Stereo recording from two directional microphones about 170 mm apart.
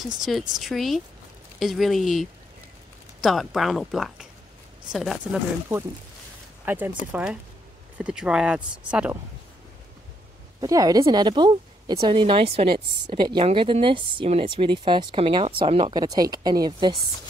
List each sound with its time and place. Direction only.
0.2 s speech: centre (ahead or behind)
10.6 s speech: 20° right (ahead or behind)